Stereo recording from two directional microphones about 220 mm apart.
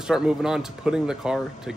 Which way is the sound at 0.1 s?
Centre (ahead or behind).